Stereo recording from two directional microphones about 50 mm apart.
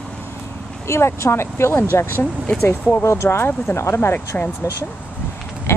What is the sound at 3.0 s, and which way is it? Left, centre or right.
Speech, left.